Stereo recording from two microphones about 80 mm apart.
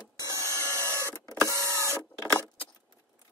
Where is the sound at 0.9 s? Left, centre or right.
Left.